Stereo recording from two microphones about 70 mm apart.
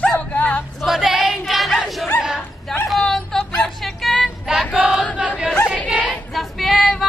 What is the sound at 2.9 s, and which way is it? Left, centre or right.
Vehicle, centre.